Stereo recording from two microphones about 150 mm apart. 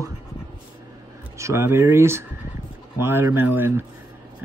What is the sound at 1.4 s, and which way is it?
Speech, 15° right (ahead or behind).